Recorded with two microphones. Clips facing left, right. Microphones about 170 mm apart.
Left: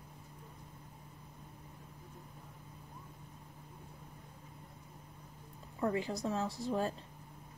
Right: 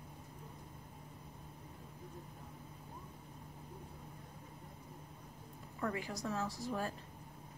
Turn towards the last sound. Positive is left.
turn(degrees=25)  # may be behind; listen again after turning